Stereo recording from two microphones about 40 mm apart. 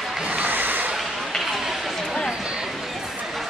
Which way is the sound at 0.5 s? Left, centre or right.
Right.